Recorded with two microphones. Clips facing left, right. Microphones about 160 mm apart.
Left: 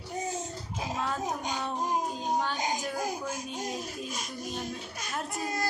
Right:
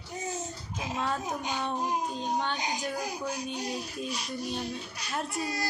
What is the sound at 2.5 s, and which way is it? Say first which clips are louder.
A child's voice: left 1 dB; 45° left (ahead or behind).